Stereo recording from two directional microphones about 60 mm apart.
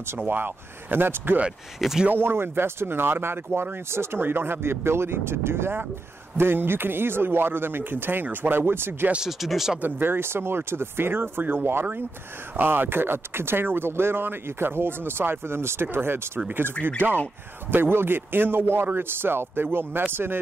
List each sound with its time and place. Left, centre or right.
0.2 s speech: right
1.8 s speech: centre
2.0 s speech: right
9.4 s speech: centre
9.8 s speech: right